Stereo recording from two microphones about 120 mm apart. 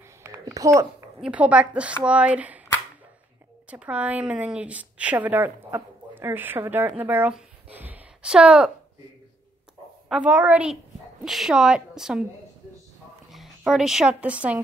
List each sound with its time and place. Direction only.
0.2 s a sound: 25° right (ahead or behind)
1.2 s a woman's voice: 10° right (ahead or behind)
3.7 s a woman's voice: 10° right (ahead or behind)
10.0 s a woman's voice: 5° right (ahead or behind)
10.3 s a woman's voice: 20° right (ahead or behind)
11.2 s a woman's voice: centre (ahead or behind)
13.3 s a woman's voice: 5° right (ahead or behind)